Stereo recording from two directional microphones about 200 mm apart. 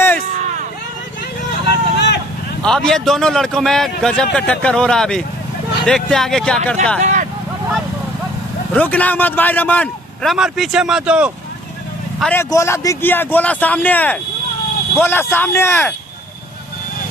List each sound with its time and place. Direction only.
1.7 s vehicle: 60° left (ahead or behind)
2.6 s speech: 5° left (ahead or behind)
7.0 s vehicle: 35° right (ahead or behind)
8.7 s a man's voice: 10° left (ahead or behind)
12.2 s a man's voice: 10° left (ahead or behind)